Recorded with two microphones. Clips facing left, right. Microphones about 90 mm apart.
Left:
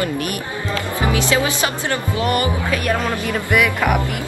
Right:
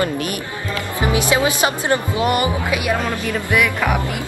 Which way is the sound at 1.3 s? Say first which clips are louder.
Right 2 dB; 20° right (ahead or behind).